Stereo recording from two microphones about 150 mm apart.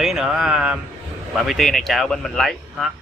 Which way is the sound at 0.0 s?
5° right (ahead or behind).